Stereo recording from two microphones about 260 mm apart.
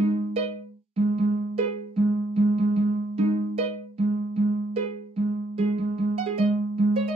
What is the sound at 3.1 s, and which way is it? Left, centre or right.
Music, right.